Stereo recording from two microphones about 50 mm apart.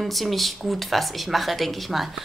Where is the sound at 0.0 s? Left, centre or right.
Centre.